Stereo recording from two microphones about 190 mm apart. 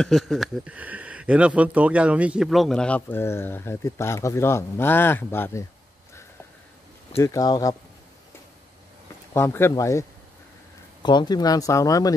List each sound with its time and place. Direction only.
0.0 s speech: centre (ahead or behind)
7.2 s speech: 15° left (ahead or behind)
9.3 s speech: 15° left (ahead or behind)